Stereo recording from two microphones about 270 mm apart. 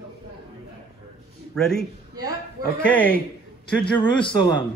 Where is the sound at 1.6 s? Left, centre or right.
Centre.